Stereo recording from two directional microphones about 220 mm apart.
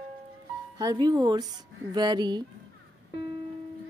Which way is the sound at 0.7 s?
20° right (ahead or behind).